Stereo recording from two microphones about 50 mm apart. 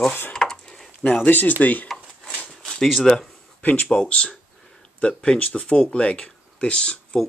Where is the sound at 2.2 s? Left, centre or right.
Left.